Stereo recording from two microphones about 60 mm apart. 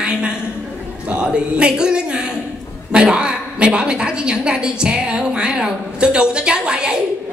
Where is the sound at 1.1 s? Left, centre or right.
Centre.